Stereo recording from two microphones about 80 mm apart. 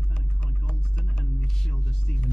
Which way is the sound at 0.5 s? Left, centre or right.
Centre.